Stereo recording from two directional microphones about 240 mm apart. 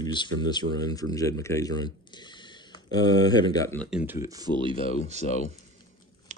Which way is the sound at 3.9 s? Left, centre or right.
Centre.